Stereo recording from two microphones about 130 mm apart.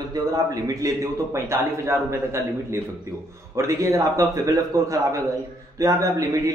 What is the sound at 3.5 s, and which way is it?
A man's voice, 25° right (ahead or behind).